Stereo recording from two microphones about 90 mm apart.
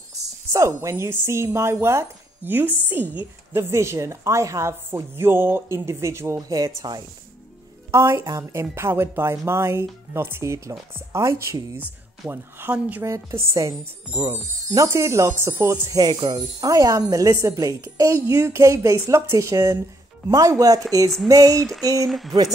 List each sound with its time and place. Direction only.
0.5 s speech: 30° right (ahead or behind)
7.9 s speech: 30° right (ahead or behind)
13.0 s speech: 30° right (ahead or behind)
14.9 s speech: 35° right (ahead or behind)
15.9 s speech: 50° right (ahead or behind)
16.7 s speech: 40° right (ahead or behind)
22.0 s speech: centre (ahead or behind)